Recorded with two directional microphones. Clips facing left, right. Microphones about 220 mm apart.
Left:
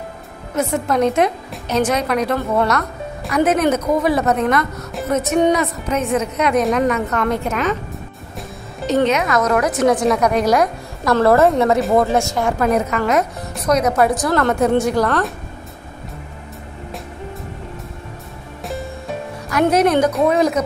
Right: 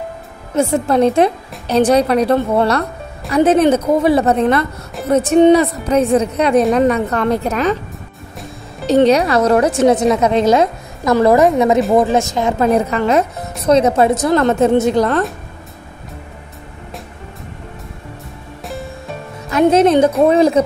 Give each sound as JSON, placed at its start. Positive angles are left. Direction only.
{"t": 0.6, "sound": "speech", "side_deg": -30}
{"t": 8.8, "sound": "a woman's voice", "side_deg": -35}
{"t": 19.5, "sound": "a woman's voice", "side_deg": -25}